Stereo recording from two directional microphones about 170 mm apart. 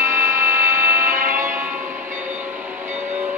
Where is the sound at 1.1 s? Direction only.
55° right (ahead or behind).